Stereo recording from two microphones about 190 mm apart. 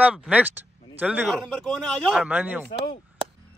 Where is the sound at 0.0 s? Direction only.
5° right (ahead or behind).